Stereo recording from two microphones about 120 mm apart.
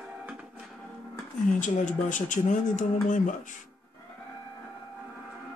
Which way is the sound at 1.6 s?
90° left.